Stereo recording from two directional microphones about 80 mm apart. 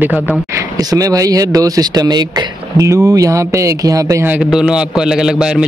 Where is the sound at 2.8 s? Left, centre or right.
Right.